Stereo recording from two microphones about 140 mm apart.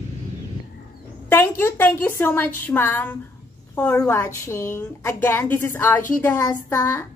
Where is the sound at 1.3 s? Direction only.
15° left (ahead or behind).